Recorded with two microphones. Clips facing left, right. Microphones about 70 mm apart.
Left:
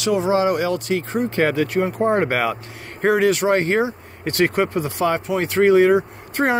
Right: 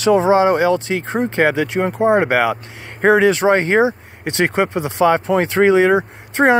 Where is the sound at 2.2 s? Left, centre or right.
Right.